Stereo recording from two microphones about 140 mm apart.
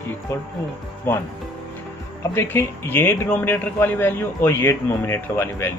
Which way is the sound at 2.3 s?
15° left (ahead or behind).